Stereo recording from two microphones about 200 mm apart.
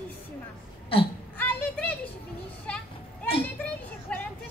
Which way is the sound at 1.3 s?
10° left (ahead or behind).